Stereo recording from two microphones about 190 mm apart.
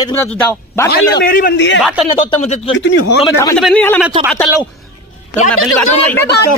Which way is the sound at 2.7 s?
70° left (ahead or behind).